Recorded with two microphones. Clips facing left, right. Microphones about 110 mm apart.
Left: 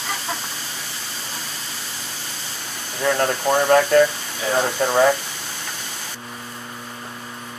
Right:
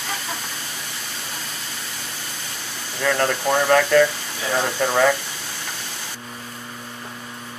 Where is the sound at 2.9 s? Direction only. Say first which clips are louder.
Left 1 dB; 15° left (ahead or behind).